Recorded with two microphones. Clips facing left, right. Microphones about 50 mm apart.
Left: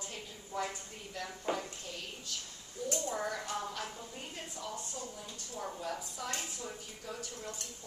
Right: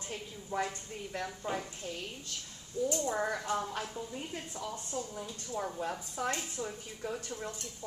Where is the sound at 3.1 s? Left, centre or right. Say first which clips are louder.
Right 4 dB; right.